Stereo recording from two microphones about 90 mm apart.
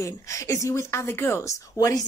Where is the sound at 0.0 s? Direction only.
35° left (ahead or behind).